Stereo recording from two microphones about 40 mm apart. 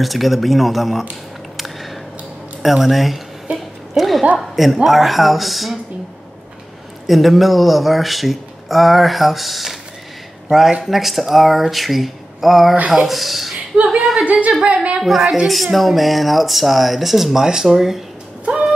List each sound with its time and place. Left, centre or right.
0.0 s speech: centre
2.6 s speech: centre
3.5 s a sound: centre
4.4 s speech: centre
7.1 s speech: centre
10.8 s speech: centre
14.2 s a woman's voice: right
15.0 s speech: centre